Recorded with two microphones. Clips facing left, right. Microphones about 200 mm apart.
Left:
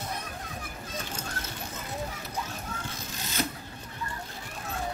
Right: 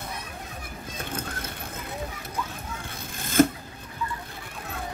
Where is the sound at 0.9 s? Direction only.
55° right (ahead or behind).